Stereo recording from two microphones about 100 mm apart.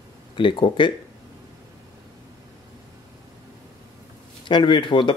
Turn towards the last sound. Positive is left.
turn(degrees=55)  # may be behind; listen again after turning